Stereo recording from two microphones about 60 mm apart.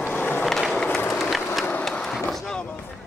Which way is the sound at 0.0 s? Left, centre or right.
Left.